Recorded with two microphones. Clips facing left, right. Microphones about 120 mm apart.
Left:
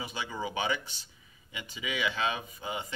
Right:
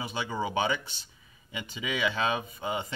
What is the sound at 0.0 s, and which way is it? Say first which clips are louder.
Speech: right 4 dB; 30° right (ahead or behind).